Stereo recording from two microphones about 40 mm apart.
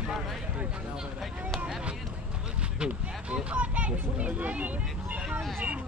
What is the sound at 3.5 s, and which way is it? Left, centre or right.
A child's voice, right.